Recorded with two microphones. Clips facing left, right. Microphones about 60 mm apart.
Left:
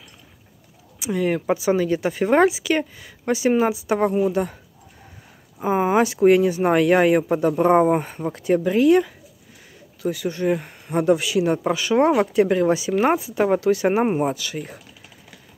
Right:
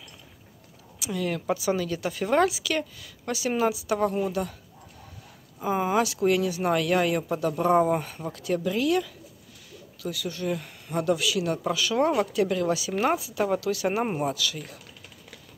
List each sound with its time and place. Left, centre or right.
0.9 s speech: left
5.6 s speech: left